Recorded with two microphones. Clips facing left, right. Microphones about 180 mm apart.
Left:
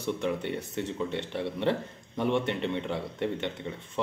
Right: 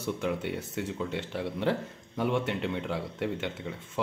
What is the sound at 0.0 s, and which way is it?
Speech, 5° right (ahead or behind).